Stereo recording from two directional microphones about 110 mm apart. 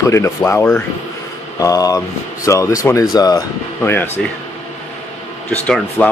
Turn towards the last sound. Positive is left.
turn(degrees=10)  # may be behind; listen again after turning